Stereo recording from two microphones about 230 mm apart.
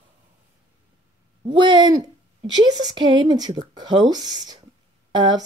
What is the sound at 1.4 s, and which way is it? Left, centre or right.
A woman's voice, right.